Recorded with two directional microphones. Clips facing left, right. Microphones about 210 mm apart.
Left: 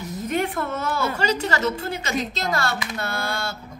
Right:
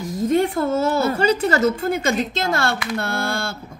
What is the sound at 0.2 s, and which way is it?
Speech, 30° right (ahead or behind).